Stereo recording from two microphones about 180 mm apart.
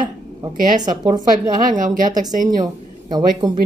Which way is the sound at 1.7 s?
45° right (ahead or behind).